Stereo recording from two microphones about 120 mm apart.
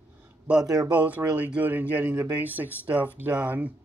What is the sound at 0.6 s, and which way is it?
Speech, 30° right (ahead or behind).